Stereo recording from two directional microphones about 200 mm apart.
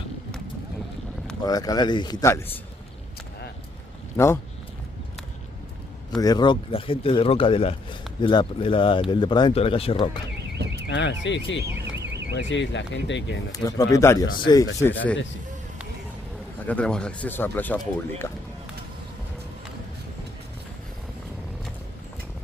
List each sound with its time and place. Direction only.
1.4 s speech: 20° left (ahead or behind)
6.2 s speech: 20° left (ahead or behind)
10.5 s car alarm: 60° right (ahead or behind)
10.9 s speech: 65° left (ahead or behind)
13.5 s speech: 15° left (ahead or behind)
14.8 s speech: 10° left (ahead or behind)
16.6 s speech: 5° left (ahead or behind)